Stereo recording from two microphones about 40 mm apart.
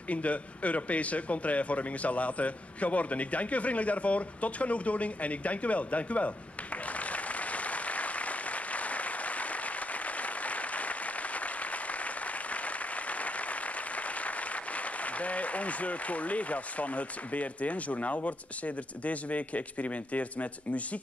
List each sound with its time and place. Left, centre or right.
0.1 s speech: left
6.9 s applause: left